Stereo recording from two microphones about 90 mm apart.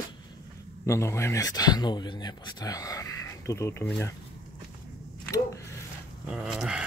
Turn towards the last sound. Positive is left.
turn(degrees=-5)  # may be behind; listen again after turning